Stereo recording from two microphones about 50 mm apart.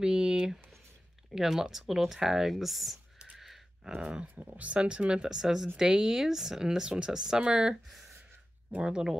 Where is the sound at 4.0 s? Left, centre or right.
Centre.